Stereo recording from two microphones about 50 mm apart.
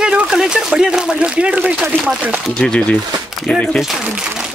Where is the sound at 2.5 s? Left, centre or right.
Centre.